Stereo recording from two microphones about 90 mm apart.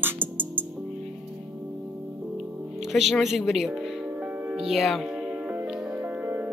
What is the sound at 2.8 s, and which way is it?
Speech, centre (ahead or behind).